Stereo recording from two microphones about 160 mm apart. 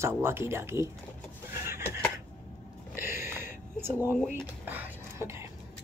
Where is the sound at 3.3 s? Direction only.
15° right (ahead or behind).